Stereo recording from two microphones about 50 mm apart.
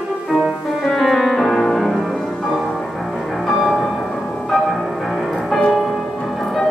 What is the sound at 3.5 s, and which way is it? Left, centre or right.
Music, centre.